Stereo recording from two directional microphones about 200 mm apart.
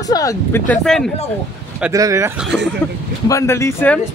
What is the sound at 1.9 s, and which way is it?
Speech, 15° right (ahead or behind).